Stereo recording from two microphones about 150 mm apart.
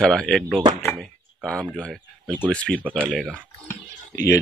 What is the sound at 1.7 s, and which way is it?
A man's voice, 5° left (ahead or behind).